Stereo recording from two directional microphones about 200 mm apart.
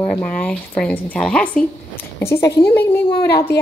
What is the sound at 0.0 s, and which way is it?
Speech, 5° left (ahead or behind).